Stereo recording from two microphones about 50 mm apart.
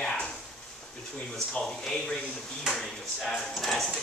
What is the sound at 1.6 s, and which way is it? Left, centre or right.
A woman's voice, centre.